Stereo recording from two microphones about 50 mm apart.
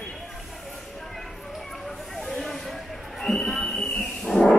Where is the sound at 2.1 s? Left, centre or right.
Centre.